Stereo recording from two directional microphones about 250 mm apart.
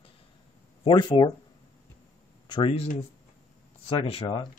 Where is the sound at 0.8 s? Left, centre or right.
Centre.